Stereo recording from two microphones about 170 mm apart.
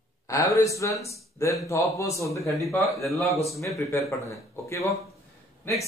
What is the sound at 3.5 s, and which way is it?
Speech, 20° left (ahead or behind).